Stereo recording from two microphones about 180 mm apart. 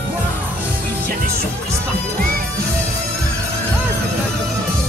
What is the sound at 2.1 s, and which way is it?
Music, 55° right (ahead or behind).